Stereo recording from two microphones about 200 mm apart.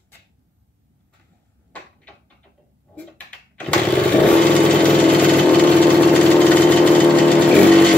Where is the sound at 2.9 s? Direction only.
5° left (ahead or behind).